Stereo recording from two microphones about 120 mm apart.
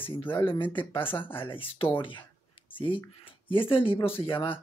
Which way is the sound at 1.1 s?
15° left (ahead or behind).